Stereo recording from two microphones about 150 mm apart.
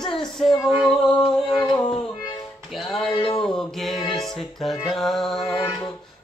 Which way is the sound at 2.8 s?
5° left (ahead or behind).